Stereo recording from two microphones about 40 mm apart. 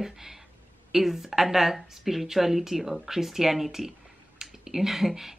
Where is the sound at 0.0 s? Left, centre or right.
Centre.